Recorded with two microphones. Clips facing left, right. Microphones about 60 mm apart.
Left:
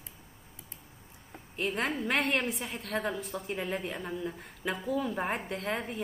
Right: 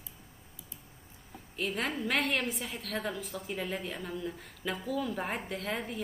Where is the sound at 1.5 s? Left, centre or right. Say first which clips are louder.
Left 2 dB; centre.